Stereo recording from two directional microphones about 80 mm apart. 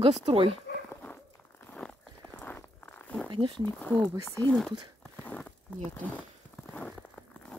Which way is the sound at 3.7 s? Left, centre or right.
Left.